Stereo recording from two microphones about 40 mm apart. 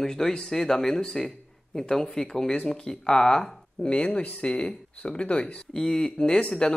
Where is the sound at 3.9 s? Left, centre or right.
Left.